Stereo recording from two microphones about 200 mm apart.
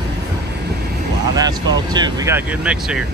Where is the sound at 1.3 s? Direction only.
20° right (ahead or behind).